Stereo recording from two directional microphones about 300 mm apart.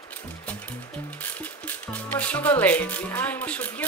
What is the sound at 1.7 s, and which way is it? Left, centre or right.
Speech, centre.